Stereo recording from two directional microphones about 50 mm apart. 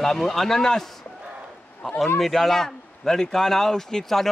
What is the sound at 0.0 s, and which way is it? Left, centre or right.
Speech, centre.